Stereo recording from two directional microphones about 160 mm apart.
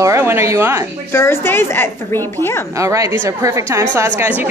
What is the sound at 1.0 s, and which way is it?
Speech, 15° left (ahead or behind).